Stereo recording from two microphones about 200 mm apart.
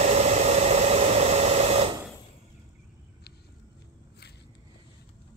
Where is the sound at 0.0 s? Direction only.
35° right (ahead or behind).